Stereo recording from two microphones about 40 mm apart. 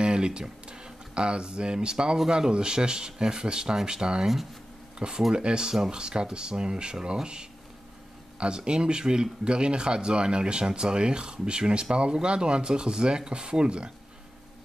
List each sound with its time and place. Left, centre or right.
0.0 s speech: right